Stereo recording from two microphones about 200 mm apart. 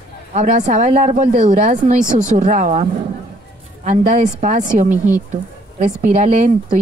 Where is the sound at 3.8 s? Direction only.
40° right (ahead or behind).